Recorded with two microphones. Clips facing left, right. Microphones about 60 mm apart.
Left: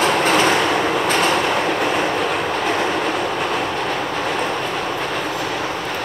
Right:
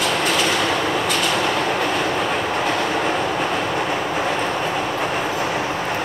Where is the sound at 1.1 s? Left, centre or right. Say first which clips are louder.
Left 3 dB; left.